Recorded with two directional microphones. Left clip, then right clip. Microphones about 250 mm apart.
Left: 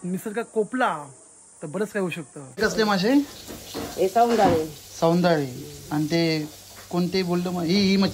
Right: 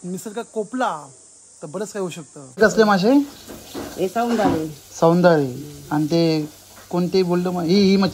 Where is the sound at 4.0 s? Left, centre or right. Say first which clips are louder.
Left 1 dB; right.